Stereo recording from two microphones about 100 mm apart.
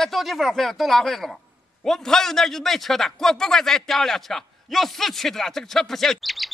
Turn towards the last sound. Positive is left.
turn(degrees=0)  # may be behind; listen again after turning